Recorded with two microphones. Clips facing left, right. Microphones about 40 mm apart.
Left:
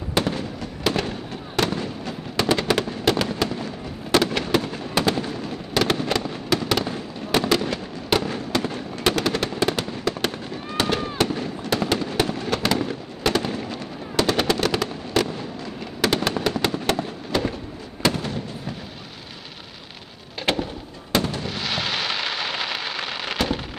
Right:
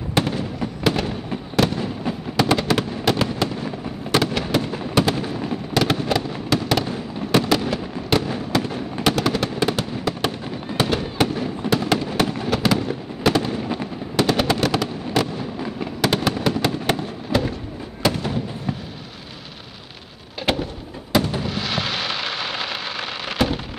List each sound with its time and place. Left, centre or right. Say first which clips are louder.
0.1 s fireworks: right 1 dB; centre
13.7 s fireworks: right 5 dB; centre
14.2 s fireworks: right 1 dB; centre
20.5 s fireworks: right 1 dB; centre
21.4 s a sound: right 2 dB; centre